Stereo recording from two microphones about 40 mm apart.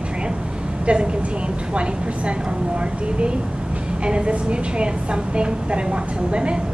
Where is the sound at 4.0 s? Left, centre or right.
Right.